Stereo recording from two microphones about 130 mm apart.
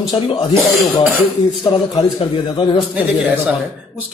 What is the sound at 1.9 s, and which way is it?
Speech, 40° left (ahead or behind).